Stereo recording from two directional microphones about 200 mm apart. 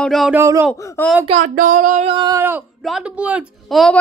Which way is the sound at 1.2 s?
35° right (ahead or behind).